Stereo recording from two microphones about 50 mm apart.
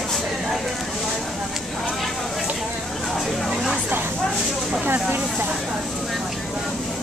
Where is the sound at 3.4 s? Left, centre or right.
Centre.